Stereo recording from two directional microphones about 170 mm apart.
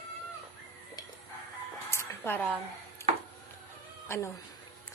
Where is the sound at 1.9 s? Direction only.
15° left (ahead or behind).